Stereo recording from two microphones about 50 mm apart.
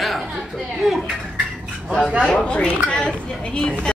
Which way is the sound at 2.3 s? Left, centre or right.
Left.